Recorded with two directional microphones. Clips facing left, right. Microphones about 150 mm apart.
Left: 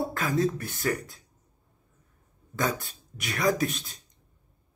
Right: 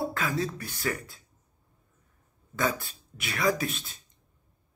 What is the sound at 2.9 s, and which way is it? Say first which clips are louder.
Speech: left 2 dB; 45° left (ahead or behind).